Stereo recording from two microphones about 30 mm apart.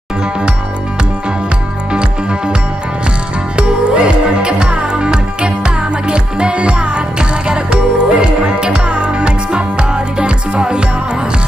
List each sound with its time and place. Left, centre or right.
1.9 s music: right
3.5 s music: right